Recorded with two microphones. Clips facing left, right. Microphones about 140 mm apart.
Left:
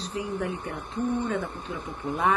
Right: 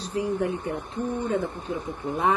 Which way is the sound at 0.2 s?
30° right (ahead or behind).